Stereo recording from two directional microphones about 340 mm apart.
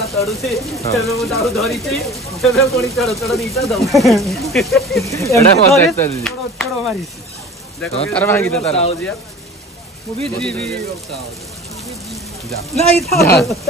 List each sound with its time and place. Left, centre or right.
0.0 s speech: centre
8.6 s speech: centre
10.4 s speech: centre
11.8 s a sound: centre
13.2 s speech: centre